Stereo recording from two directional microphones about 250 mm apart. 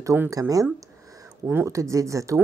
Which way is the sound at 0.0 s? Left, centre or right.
Centre.